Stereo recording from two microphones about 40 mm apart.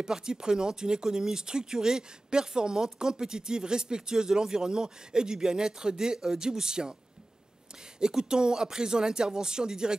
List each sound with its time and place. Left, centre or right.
0.0 s speech: centre
8.0 s speech: centre